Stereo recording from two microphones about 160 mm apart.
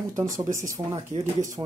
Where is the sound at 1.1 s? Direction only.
50° right (ahead or behind).